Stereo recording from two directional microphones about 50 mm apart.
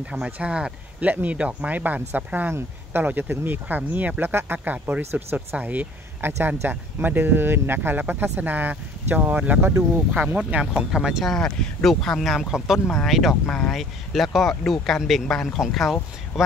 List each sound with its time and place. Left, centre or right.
0.1 s speech: right
1.0 s speech: right
4.2 s speech: right
10.6 s speech: centre
11.3 s speech: centre
12.5 s speech: centre
13.5 s speech: centre
13.7 s speech: centre
15.7 s speech: centre